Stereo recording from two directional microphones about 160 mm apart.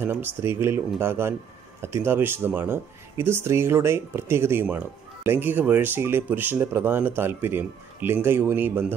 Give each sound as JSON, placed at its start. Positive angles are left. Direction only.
{"t": 0.0, "sound": "speech", "side_deg": -15}